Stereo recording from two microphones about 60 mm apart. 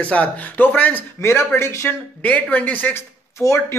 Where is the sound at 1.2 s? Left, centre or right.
Left.